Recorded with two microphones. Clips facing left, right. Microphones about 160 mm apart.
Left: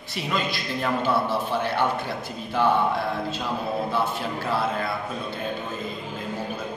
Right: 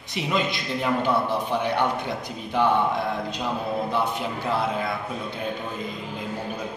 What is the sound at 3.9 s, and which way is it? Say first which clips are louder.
Speech: even; 15° right (ahead or behind).